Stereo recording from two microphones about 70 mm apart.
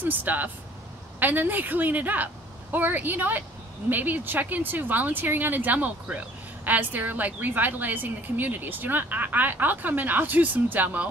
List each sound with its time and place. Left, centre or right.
0.0 s speech: right